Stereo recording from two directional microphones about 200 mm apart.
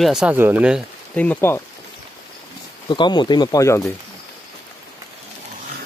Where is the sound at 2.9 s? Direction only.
20° left (ahead or behind).